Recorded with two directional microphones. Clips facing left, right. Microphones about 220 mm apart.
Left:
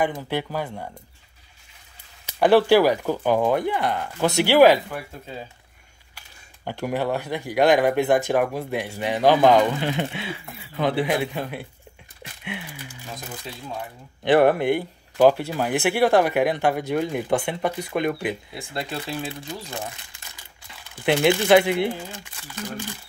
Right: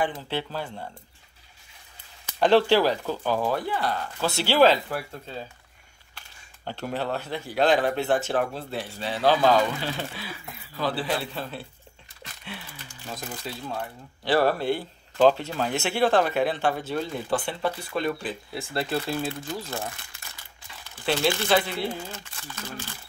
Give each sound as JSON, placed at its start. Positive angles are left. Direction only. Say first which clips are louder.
{"t": 0.3, "sound": "speech", "louder": "left 4 dB", "side_deg": 15}
{"t": 2.3, "sound": "speech", "louder": "left 3 dB", "side_deg": 10}
{"t": 6.1, "sound": "speech", "louder": "even", "side_deg": 15}
{"t": 12.2, "sound": "a sound", "louder": "left 6 dB", "side_deg": 15}
{"t": 14.2, "sound": "speech", "louder": "left 5 dB", "side_deg": 20}
{"t": 18.5, "sound": "speech", "louder": "right 3 dB", "side_deg": 0}
{"t": 19.2, "sound": "speech", "louder": "right 2 dB", "side_deg": 15}